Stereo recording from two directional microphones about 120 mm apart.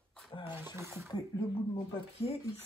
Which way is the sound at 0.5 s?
20° right (ahead or behind).